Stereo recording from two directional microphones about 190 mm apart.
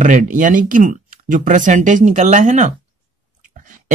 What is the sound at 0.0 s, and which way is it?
A woman's voice, 45° right (ahead or behind).